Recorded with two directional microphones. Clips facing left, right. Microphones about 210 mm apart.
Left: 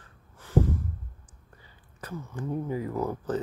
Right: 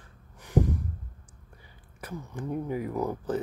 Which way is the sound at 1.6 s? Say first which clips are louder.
Even; 15° right (ahead or behind).